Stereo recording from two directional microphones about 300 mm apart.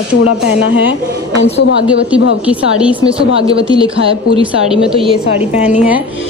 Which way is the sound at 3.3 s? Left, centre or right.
Centre.